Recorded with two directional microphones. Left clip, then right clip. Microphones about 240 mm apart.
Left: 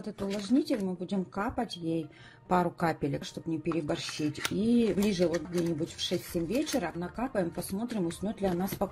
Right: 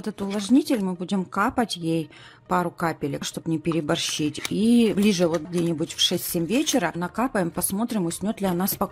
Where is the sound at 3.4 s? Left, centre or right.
Right.